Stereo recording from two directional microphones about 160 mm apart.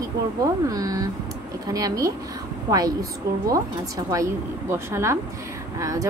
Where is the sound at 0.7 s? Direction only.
20° right (ahead or behind).